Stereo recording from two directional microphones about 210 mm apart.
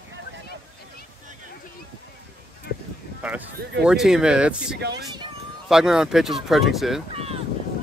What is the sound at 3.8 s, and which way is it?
Speech, 5° right (ahead or behind).